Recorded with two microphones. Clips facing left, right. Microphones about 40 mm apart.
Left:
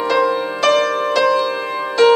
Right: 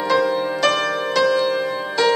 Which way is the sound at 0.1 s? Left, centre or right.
Centre.